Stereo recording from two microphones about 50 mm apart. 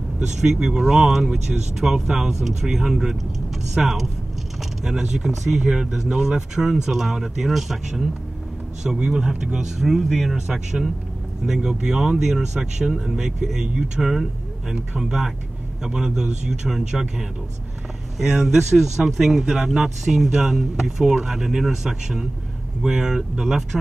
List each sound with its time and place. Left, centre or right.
0.3 s speech: centre
5.0 s speech: centre
5.3 s speech: centre
18.2 s speech: centre